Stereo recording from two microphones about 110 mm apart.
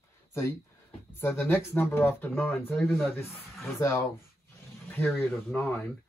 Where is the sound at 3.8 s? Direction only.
25° left (ahead or behind).